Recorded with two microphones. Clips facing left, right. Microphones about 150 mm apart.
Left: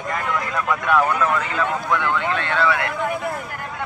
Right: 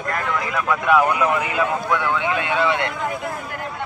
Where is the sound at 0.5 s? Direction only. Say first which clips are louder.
Right 2 dB; 5° right (ahead or behind).